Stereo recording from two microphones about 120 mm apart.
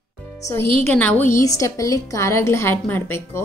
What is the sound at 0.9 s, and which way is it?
Speech, 15° left (ahead or behind).